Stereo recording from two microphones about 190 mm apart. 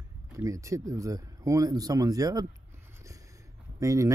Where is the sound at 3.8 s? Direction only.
15° right (ahead or behind).